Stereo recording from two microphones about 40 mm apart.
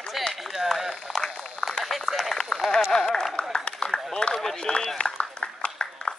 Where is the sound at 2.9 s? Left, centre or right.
Centre.